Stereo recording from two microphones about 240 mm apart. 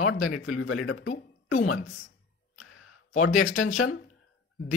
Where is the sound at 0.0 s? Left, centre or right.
Left.